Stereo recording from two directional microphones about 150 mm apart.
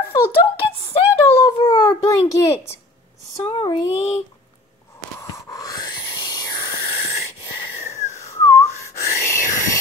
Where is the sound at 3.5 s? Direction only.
35° left (ahead or behind).